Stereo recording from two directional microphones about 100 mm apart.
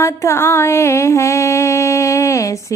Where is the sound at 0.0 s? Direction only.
25° left (ahead or behind).